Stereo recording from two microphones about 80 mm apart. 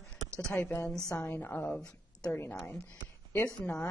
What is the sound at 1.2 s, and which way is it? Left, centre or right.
Speech, left.